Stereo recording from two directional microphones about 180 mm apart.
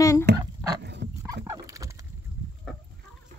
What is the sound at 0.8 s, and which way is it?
Dog, 70° right (ahead or behind).